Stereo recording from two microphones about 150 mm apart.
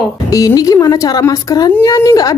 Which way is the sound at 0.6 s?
25° left (ahead or behind).